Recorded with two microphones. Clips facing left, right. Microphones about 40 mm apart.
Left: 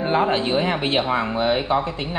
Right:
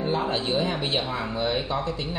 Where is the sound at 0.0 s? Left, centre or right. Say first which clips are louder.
Left 6 dB; left.